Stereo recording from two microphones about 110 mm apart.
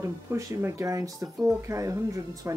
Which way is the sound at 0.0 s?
30° right (ahead or behind).